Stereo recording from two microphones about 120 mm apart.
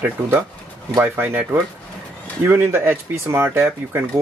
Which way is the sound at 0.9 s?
15° right (ahead or behind).